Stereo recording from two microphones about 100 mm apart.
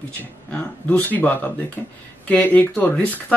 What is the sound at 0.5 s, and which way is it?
Speech, 15° left (ahead or behind).